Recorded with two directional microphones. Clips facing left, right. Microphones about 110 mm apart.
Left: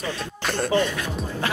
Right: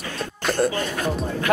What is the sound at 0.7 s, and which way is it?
Music, 45° right (ahead or behind).